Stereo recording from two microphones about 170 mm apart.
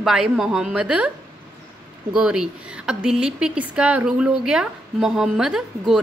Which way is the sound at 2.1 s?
5° right (ahead or behind).